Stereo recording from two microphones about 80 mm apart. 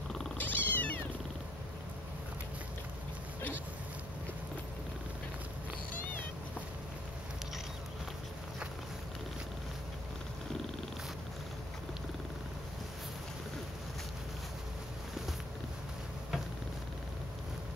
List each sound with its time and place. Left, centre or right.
0.4 s cat: left